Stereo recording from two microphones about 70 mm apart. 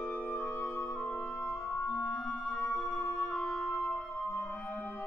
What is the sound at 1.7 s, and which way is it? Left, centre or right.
Music, left.